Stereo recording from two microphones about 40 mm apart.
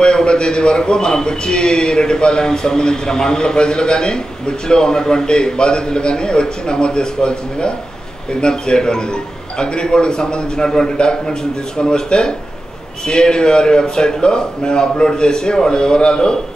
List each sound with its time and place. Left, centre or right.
0.0 s a man's voice: left